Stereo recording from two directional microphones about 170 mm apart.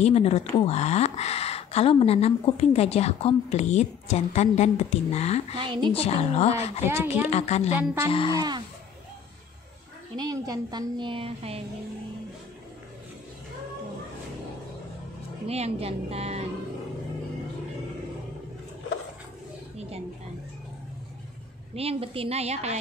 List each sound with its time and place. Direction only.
0.0 s speech: 40° left (ahead or behind)
5.6 s a woman's voice: 30° right (ahead or behind)
5.9 s speech: 40° left (ahead or behind)
8.4 s a woman's voice: 25° right (ahead or behind)
10.1 s a woman's voice: 20° right (ahead or behind)
15.4 s a woman's voice: 35° right (ahead or behind)
21.7 s a woman's voice: 35° right (ahead or behind)